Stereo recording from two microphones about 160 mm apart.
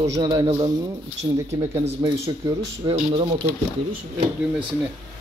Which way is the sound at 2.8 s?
20° right (ahead or behind).